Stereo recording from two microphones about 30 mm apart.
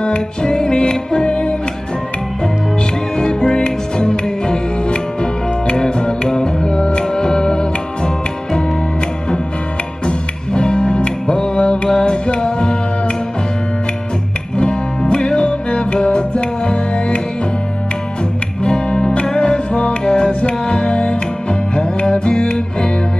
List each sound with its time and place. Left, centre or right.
0.4 s music: left
3.2 s music: left
10.0 s music: left
14.6 s music: left
18.6 s music: left
20.1 s music: left